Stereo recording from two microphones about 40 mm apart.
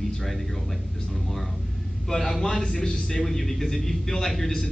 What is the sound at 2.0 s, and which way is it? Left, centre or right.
Speech, centre.